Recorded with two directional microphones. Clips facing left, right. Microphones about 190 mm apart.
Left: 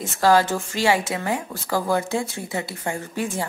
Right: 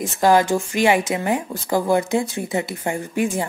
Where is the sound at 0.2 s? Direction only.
15° right (ahead or behind).